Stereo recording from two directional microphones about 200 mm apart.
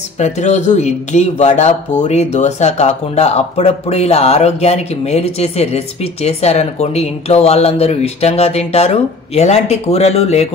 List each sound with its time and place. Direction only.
0.2 s speech: 35° left (ahead or behind)